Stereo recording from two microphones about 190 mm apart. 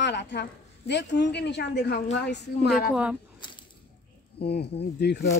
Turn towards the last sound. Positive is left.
turn(degrees=60)  # may be behind; listen again after turning